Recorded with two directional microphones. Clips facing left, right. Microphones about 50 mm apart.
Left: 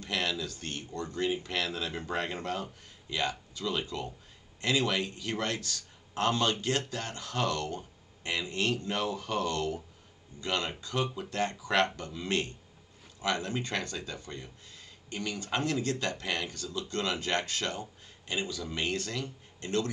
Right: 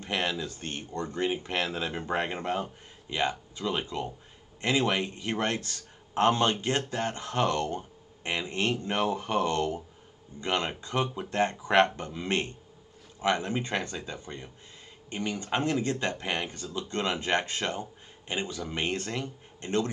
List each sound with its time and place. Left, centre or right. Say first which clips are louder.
0.0 s a man's voice: right 2 dB; right